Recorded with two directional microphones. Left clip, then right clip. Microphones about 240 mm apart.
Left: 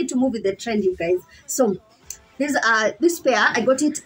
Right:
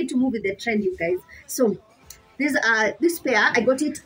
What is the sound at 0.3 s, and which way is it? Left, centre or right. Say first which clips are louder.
Speech: left 1 dB; centre.